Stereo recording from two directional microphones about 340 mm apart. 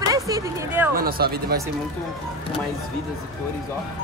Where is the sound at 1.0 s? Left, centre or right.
Right.